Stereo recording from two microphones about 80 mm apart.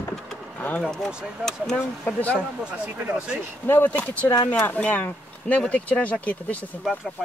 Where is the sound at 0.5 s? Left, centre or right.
Left.